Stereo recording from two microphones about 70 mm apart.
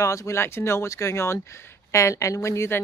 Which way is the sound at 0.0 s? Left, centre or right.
Left.